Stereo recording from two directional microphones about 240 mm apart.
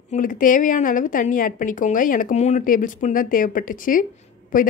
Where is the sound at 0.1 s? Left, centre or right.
Left.